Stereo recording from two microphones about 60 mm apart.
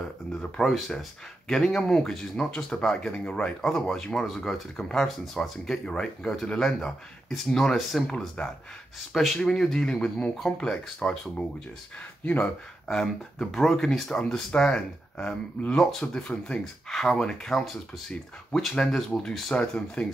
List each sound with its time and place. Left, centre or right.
0.0 s speech: centre
8.4 s speech: left
9.1 s speech: centre
12.8 s speech: centre